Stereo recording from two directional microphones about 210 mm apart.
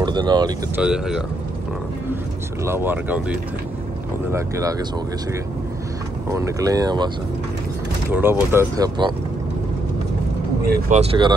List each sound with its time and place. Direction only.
0.0 s speech: 20° right (ahead or behind)
0.7 s speech: 5° right (ahead or behind)
2.6 s speech: 10° right (ahead or behind)
6.3 s speech: 15° right (ahead or behind)
8.1 s speech: 10° right (ahead or behind)
10.9 s speech: 25° right (ahead or behind)